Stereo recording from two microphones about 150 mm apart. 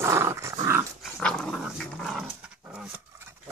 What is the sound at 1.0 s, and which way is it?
Dog, 5° left (ahead or behind).